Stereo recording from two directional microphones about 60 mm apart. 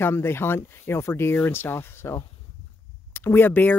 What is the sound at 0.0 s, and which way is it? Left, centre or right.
Speech, left.